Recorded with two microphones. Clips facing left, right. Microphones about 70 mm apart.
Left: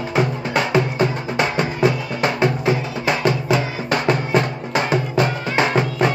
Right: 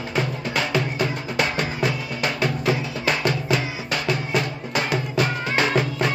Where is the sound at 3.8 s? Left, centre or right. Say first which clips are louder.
Left 6 dB; left.